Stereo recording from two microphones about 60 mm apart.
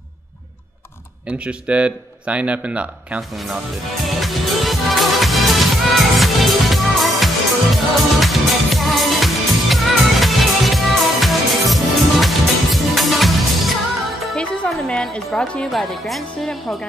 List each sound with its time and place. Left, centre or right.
1.2 s speech: centre
4.0 s music: centre
14.3 s music: centre
15.4 s speech: centre
15.7 s a woman's voice: centre